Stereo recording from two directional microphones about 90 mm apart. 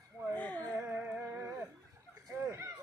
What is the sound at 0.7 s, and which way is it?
Music, 20° right (ahead or behind).